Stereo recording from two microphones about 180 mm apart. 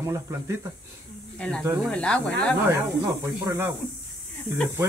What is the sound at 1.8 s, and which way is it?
Speech, 5° left (ahead or behind).